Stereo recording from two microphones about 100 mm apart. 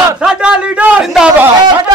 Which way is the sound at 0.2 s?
5° right (ahead or behind).